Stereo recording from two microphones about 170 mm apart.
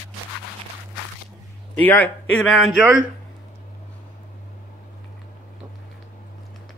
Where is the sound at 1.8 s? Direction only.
10° left (ahead or behind).